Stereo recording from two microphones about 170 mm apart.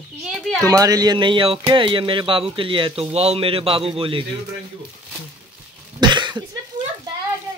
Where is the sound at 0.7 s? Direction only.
20° right (ahead or behind).